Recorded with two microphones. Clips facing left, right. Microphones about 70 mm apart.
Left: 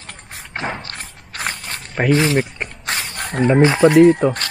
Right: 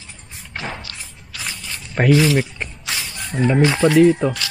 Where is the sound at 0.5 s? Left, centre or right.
Left.